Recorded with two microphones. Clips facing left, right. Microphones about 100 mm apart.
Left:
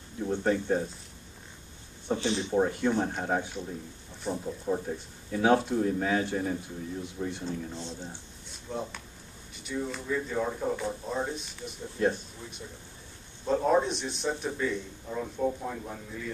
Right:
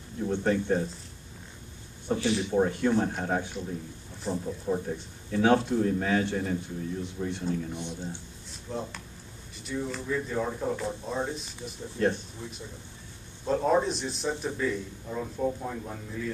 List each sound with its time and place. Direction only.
0.2 s speech: 5° left (ahead or behind)
2.1 s speech: 25° left (ahead or behind)
2.5 s speech: 5° left (ahead or behind)
7.7 s a man's voice: 15° right (ahead or behind)
8.5 s speech: centre (ahead or behind)